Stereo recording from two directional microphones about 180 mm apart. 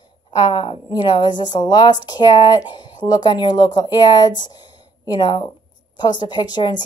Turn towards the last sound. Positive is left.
turn(degrees=25)  # may be behind; listen again after turning